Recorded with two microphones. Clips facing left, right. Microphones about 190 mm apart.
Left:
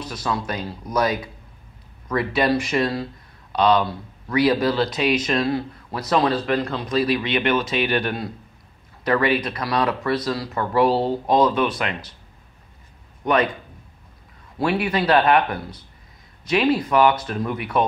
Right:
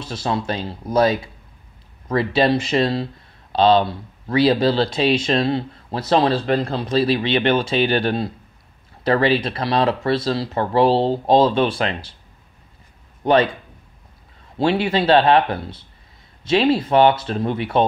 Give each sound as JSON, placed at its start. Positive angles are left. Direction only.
{"t": 0.0, "sound": "speech", "side_deg": -25}
{"t": 13.2, "sound": "a man's voice", "side_deg": -30}
{"t": 14.6, "sound": "speech", "side_deg": -25}